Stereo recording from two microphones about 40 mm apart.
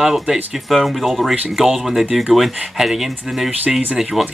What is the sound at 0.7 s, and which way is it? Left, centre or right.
Speech, centre.